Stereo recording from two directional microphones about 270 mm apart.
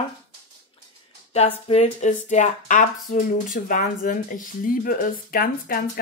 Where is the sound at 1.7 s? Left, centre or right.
Left.